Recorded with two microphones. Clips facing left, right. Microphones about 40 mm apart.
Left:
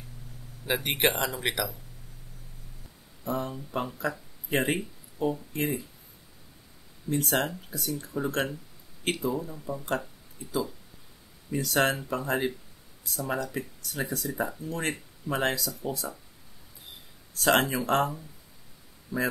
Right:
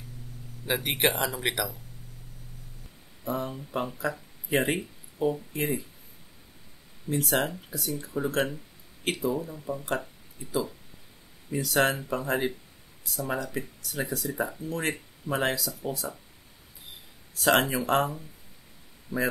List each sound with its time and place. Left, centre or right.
0.7 s speech: centre
3.3 s speech: centre
7.1 s speech: centre
17.3 s speech: centre
19.1 s speech: right